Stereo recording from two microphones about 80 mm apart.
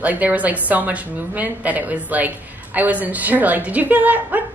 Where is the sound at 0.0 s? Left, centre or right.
Centre.